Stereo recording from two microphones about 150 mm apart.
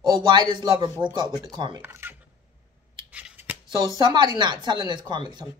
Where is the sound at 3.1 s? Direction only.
10° right (ahead or behind).